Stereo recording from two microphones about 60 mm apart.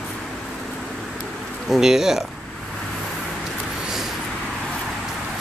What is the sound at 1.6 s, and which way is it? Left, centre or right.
Speech, centre.